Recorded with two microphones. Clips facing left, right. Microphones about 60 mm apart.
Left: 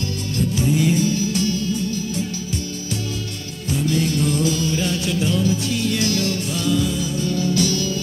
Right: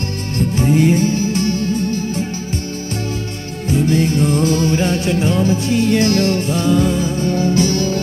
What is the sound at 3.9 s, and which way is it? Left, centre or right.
Music, right.